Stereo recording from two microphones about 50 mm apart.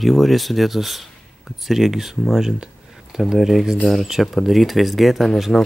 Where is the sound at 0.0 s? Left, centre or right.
Centre.